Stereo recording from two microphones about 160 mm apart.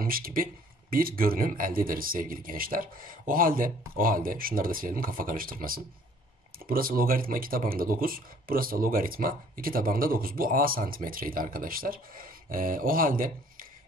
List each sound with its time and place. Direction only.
0.0 s speech: 65° right (ahead or behind)